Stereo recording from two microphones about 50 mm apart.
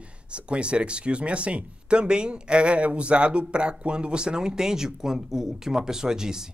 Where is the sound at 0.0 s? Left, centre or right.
Right.